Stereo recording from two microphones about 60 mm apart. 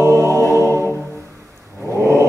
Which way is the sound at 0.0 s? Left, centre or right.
Right.